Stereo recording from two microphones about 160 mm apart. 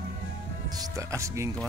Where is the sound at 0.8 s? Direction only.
20° right (ahead or behind).